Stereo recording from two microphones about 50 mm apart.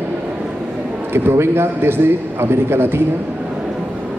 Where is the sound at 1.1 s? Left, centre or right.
Right.